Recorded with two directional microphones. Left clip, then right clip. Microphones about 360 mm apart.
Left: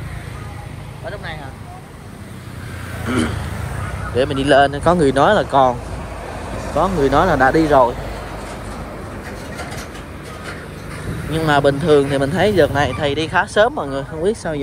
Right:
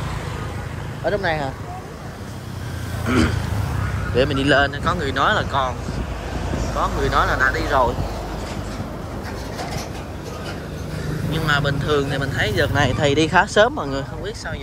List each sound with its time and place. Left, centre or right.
1.1 s speech: centre
4.1 s speech: centre
6.8 s speech: centre
11.3 s speech: centre